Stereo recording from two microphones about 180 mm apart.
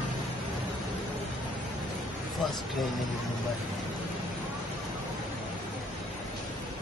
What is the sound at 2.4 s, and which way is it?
Speech, centre (ahead or behind).